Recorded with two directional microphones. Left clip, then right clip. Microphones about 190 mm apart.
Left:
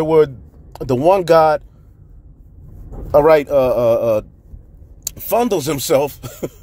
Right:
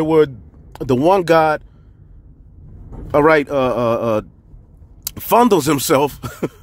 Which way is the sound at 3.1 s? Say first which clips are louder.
Left 2 dB; 20° right (ahead or behind).